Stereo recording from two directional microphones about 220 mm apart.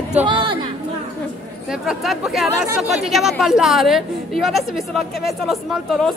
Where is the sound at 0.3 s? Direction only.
20° right (ahead or behind).